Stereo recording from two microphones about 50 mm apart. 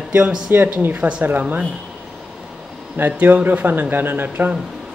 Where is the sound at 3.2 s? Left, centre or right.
Right.